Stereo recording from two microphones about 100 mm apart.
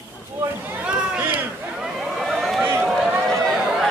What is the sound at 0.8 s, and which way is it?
Run, 10° right (ahead or behind).